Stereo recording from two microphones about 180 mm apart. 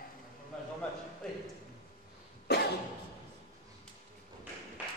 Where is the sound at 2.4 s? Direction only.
65° left (ahead or behind).